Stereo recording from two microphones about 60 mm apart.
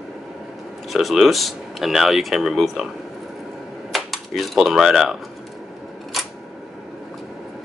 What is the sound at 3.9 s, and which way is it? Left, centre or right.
Speech, centre.